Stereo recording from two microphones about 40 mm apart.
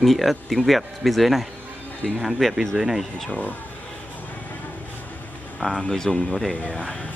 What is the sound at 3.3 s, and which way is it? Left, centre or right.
Speech, left.